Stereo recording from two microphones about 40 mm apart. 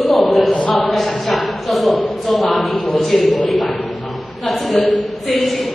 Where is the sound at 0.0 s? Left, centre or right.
Centre.